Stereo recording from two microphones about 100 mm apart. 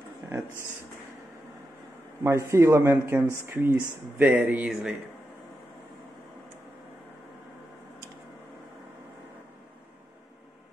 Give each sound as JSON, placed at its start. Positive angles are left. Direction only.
{"t": 2.2, "sound": "speech", "side_deg": -30}